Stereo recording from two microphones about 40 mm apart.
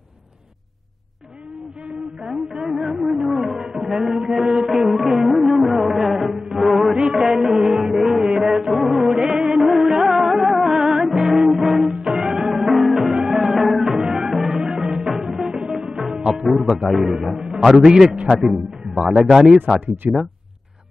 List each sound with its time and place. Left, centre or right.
2.2 s a sound: centre
4.2 s music: centre
16.4 s speech: centre
17.4 s a sound: right
17.7 s a man's voice: centre
18.5 s a man's voice: centre
19.3 s a man's voice: centre
20.0 s speech: right